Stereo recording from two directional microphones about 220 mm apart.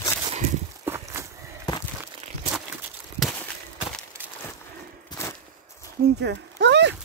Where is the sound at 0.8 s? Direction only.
10° right (ahead or behind).